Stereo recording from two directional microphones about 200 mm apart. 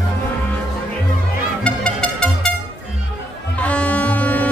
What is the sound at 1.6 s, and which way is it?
Music, 5° left (ahead or behind).